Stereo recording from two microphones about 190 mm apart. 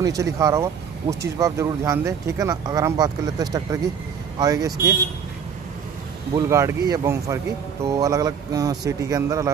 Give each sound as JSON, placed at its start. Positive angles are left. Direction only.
{"t": 0.0, "sound": "speech", "side_deg": -15}
{"t": 6.3, "sound": "speech", "side_deg": -15}